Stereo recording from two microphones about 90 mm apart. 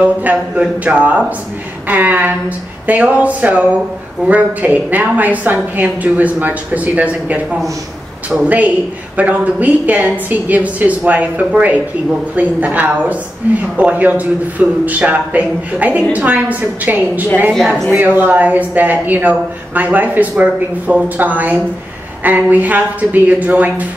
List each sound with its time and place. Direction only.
0.0 s a woman's voice: 15° right (ahead or behind)
8.5 s a woman's voice: 15° right (ahead or behind)
17.5 s speech: 5° left (ahead or behind)
17.9 s speech: 20° right (ahead or behind)